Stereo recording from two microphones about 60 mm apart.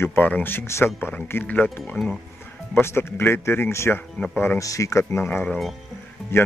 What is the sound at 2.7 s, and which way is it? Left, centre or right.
Speech, left.